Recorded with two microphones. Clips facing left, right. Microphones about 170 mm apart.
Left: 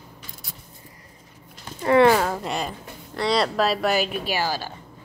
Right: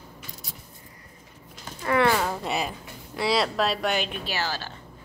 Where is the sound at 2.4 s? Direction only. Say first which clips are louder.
Even; 5° right (ahead or behind).